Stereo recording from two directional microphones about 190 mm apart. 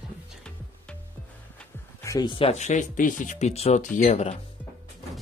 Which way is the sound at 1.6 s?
15° left (ahead or behind).